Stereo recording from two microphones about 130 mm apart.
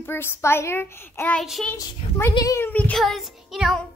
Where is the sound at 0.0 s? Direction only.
15° left (ahead or behind).